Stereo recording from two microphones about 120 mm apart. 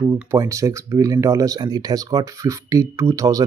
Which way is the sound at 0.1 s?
25° right (ahead or behind).